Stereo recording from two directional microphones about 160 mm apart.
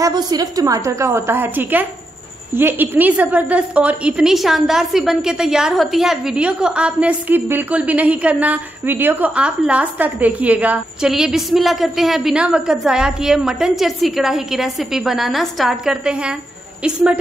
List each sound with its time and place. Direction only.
0.0 s a woman's voice: 25° right (ahead or behind); by 17.2 s 5° right (ahead or behind)